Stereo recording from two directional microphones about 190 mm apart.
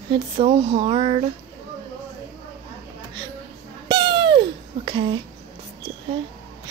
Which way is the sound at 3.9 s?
25° right (ahead or behind).